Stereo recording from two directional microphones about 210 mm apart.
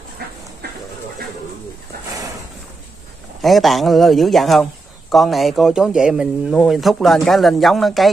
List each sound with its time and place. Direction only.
0.2 s dog: 50° right (ahead or behind)
3.4 s speech: centre (ahead or behind)